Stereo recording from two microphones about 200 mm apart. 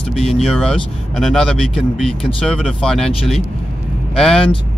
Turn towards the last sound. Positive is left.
turn(degrees=0)  # may be behind; listen again after turning